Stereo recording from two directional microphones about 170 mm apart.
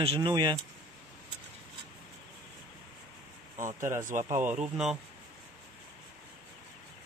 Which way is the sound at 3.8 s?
15° right (ahead or behind).